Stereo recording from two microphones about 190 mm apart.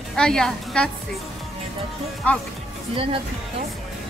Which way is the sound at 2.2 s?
10° left (ahead or behind).